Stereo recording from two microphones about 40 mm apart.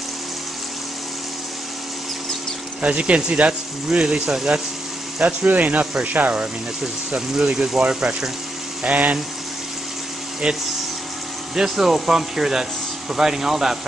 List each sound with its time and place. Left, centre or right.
2.8 s speech: right
5.2 s speech: right
7.1 s speech: right
8.8 s speech: right
10.4 s speech: right
11.5 s speech: centre